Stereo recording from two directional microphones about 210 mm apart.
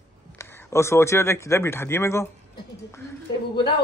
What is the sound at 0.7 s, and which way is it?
A man's voice, 10° left (ahead or behind).